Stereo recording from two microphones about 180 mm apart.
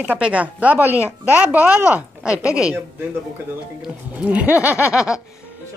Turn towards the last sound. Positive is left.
turn(degrees=-5)  # may be behind; listen again after turning